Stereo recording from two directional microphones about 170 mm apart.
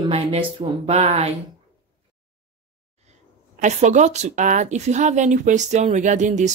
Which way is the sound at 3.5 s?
45° right (ahead or behind).